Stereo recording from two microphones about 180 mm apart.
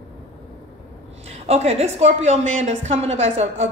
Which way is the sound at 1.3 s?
35° right (ahead or behind).